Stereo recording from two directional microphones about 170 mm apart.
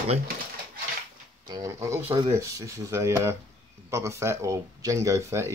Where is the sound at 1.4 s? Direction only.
20° right (ahead or behind).